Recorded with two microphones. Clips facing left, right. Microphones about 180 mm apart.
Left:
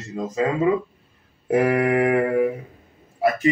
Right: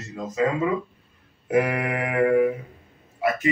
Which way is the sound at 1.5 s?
35° left (ahead or behind).